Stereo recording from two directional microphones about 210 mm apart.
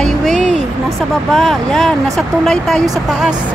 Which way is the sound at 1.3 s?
Centre (ahead or behind).